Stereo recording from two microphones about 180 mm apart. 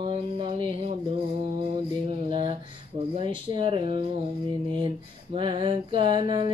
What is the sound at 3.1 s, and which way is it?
Music, 25° right (ahead or behind).